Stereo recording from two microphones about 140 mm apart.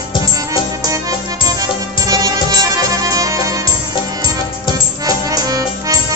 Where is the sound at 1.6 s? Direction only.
25° right (ahead or behind).